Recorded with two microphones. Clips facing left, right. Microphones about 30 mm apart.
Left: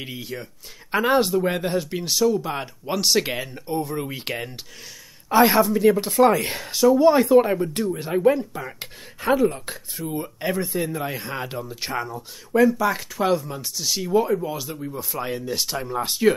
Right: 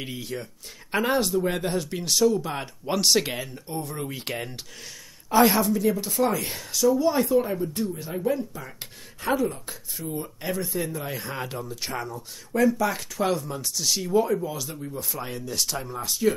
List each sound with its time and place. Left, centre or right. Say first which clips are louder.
0.0 s speech: left 1 dB; centre
1.1 s speech: left 5 dB; left
1.5 s speech: left 3 dB; centre
3.3 s speech: left 5 dB; centre
5.9 s speech: left 7 dB; left
7.2 s speech: left 7 dB; left
9.2 s speech: left 5 dB; centre
15.9 s speech: left 6 dB; left